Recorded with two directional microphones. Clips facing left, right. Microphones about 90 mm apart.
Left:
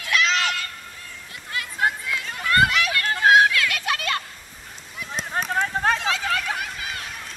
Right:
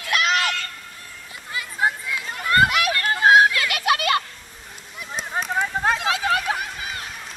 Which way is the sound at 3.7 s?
65° right (ahead or behind).